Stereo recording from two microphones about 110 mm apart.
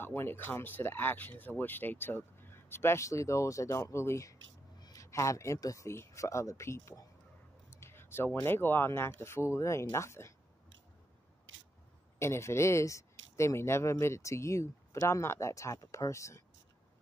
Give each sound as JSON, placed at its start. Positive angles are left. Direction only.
{"t": 0.0, "sound": "speech", "side_deg": 20}
{"t": 12.2, "sound": "speech", "side_deg": 25}